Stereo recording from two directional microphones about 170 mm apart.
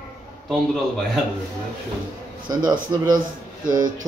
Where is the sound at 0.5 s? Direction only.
Centre (ahead or behind).